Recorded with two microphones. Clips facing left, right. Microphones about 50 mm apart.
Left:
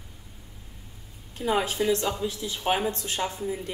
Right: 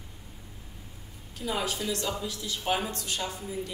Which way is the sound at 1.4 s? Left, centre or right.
Left.